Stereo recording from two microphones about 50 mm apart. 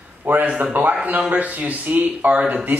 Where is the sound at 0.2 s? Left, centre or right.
Right.